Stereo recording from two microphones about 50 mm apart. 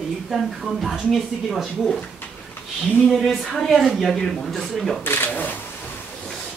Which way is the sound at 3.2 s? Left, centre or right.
Centre.